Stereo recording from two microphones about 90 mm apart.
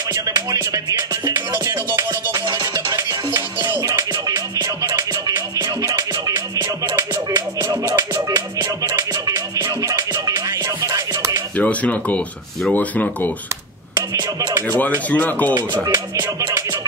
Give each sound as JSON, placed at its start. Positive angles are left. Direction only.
{"t": 0.1, "sound": "music", "side_deg": -45}
{"t": 11.5, "sound": "speech", "side_deg": 15}
{"t": 13.9, "sound": "a sound", "side_deg": -50}
{"t": 14.7, "sound": "speech", "side_deg": 20}
{"t": 15.5, "sound": "speech", "side_deg": -25}
{"t": 16.2, "sound": "music", "side_deg": -40}